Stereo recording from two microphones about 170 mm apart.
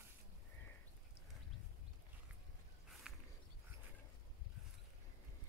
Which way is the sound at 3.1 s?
5° right (ahead or behind).